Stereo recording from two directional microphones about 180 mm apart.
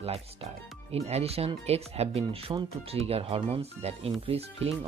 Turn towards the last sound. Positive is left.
turn(degrees=-30)  # may be behind; listen again after turning